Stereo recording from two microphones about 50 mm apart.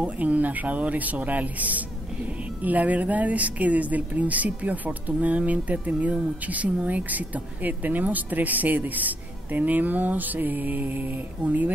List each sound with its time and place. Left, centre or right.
0.0 s speech: right